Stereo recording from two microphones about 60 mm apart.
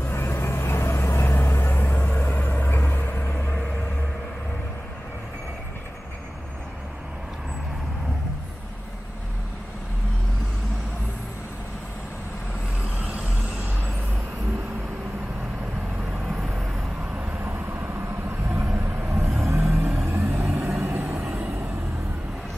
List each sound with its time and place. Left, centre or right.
0.0 s vehicle: left
16.3 s vehicle: centre
17.3 s vehicle: right